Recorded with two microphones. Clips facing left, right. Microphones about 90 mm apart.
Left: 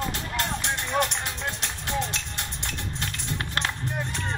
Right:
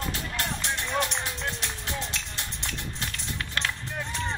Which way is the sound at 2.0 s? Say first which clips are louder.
Left 4 dB; 60° left (ahead or behind).